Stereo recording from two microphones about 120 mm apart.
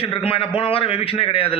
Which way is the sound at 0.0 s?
50° left (ahead or behind).